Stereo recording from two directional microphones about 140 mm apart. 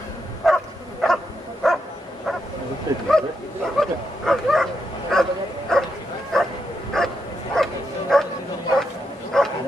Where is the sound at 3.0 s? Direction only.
5° left (ahead or behind).